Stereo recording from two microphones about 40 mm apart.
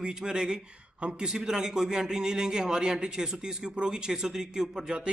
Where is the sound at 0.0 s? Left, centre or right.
Centre.